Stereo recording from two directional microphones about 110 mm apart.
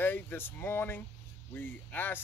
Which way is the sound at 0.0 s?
20° left (ahead or behind).